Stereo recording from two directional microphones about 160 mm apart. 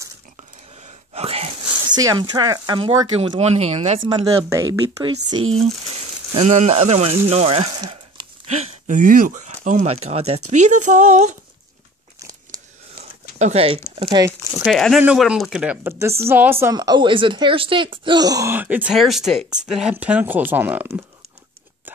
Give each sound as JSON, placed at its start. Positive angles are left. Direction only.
{"t": 1.1, "sound": "wheeze", "side_deg": -40}
{"t": 2.0, "sound": "speech", "side_deg": -25}
{"t": 4.5, "sound": "a woman's voice", "side_deg": -20}
{"t": 5.0, "sound": "speech", "side_deg": -30}
{"t": 5.9, "sound": "speech", "side_deg": -45}
{"t": 13.4, "sound": "speech", "side_deg": -40}
{"t": 14.6, "sound": "a woman's voice", "side_deg": 0}